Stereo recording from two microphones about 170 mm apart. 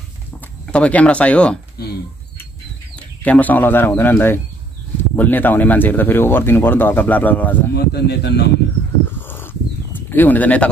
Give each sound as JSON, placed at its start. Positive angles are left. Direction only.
{"t": 0.7, "sound": "speech", "side_deg": 5}
{"t": 3.0, "sound": "speech", "side_deg": 10}
{"t": 7.7, "sound": "speech", "side_deg": 70}
{"t": 9.2, "sound": "a sound", "side_deg": 10}